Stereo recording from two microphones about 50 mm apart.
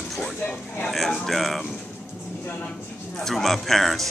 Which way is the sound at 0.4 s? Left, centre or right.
Left.